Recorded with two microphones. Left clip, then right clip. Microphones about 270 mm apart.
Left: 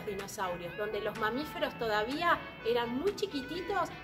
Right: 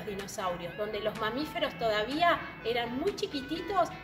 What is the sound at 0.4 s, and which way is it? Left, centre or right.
A woman's voice, centre.